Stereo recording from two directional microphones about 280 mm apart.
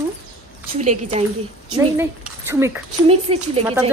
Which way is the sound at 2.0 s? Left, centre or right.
Centre.